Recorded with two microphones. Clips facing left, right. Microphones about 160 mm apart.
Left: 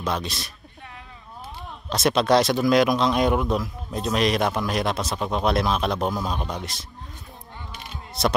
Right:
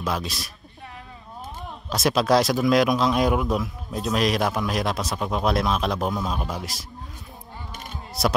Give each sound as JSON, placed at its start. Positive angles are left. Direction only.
{"t": 0.0, "sound": "speech", "side_deg": 0}
{"t": 1.9, "sound": "speech", "side_deg": 0}
{"t": 7.7, "sound": "a sound", "side_deg": -45}